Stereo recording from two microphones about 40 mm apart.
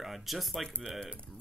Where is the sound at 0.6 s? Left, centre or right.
Centre.